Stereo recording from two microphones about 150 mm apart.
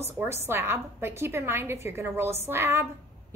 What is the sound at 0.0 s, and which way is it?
A woman's voice, 15° right (ahead or behind).